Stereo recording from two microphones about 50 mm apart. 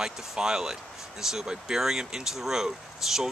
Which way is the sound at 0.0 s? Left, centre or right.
Centre.